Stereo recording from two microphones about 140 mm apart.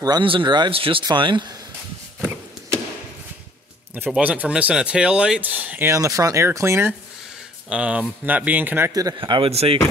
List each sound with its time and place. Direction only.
0.0 s speech: 35° right (ahead or behind)
3.9 s speech: 10° right (ahead or behind)
7.7 s speech: 10° right (ahead or behind)
9.2 s speech: 40° right (ahead or behind)